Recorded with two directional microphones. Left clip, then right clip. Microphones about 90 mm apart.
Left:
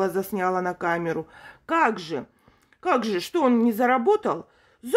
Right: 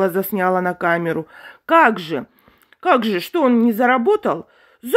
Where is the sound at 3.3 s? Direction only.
25° right (ahead or behind).